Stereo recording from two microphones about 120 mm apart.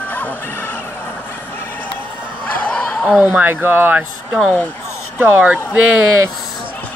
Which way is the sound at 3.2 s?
15° right (ahead or behind).